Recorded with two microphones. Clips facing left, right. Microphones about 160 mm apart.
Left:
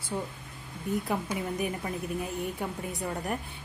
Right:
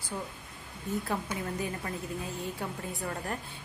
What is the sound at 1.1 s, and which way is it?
A woman's voice, 15° left (ahead or behind).